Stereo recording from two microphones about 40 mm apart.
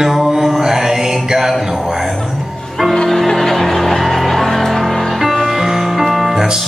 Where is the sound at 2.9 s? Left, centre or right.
Centre.